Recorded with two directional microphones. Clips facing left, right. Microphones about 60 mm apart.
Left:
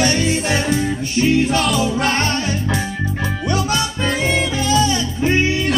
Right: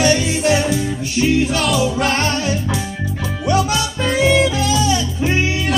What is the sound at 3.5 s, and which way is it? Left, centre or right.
Music, left.